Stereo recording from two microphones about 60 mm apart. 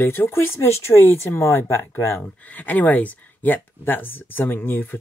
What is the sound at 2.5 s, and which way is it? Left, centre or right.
Speech, left.